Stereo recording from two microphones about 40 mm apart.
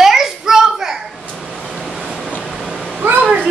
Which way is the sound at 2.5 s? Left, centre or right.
Centre.